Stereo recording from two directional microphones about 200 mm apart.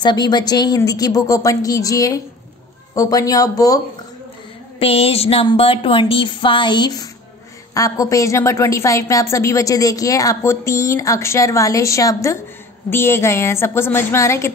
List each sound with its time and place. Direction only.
0.0 s a woman's voice: 20° left (ahead or behind)
4.7 s a woman's voice: 30° left (ahead or behind)